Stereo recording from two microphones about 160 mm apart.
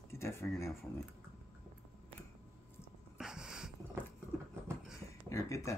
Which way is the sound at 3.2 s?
5° right (ahead or behind).